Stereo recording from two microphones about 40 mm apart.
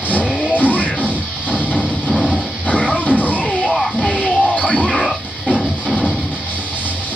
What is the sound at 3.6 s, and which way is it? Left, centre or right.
Music, centre.